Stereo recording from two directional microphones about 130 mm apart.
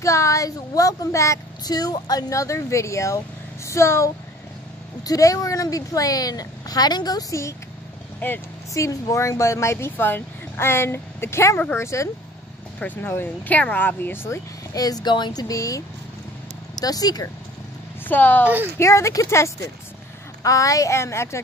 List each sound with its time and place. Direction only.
0.0 s speech: 25° left (ahead or behind)
16.8 s speech: 30° left (ahead or behind)
18.0 s speech: 15° left (ahead or behind)